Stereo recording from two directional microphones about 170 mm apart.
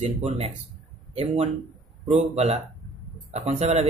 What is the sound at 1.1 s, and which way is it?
Speech, 35° right (ahead or behind).